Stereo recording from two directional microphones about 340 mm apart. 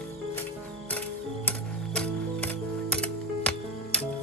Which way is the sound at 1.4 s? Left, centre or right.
Centre.